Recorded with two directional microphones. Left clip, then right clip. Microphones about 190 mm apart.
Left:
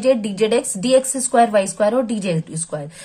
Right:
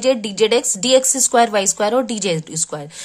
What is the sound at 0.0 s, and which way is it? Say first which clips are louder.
Speech: right 1 dB; 25° right (ahead or behind).